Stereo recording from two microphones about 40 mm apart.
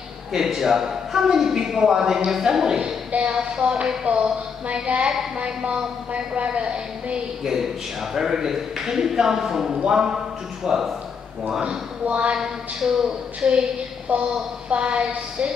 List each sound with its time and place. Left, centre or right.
0.3 s a man's voice: centre; by 7.2 s right
8.1 s a man's voice: centre
12.1 s a woman's voice: right
12.4 s a man's voice: centre
13.4 s a woman's voice: right
14.0 s a woman's voice: right